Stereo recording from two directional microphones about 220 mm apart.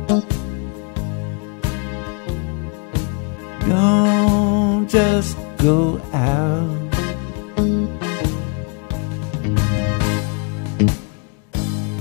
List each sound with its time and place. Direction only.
0.0 s music: 20° right (ahead or behind)
1.6 s music: 20° right (ahead or behind)
3.6 s music: 20° right (ahead or behind)
9.3 s music: 20° right (ahead or behind)